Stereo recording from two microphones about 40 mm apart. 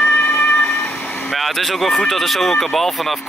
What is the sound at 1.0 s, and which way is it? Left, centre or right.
Vehicle, left.